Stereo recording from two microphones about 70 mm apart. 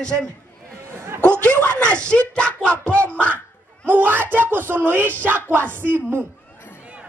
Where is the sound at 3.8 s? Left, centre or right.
Right.